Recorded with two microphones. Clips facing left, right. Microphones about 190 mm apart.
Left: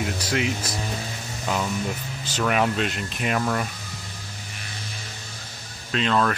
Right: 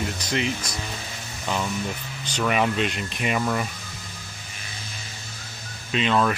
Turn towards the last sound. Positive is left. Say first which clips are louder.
# right 1 dB
turn(degrees=-5)  # may be behind; listen again after turning